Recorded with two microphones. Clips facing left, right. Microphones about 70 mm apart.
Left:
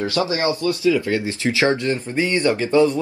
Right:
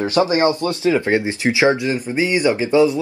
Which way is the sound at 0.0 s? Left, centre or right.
Right.